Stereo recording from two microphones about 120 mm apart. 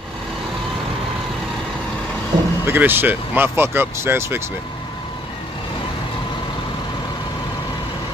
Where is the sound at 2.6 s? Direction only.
15° right (ahead or behind).